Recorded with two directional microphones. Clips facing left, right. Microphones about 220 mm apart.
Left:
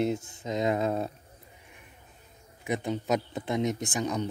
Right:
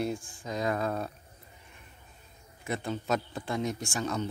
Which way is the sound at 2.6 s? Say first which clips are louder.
Left 3 dB; 15° left (ahead or behind).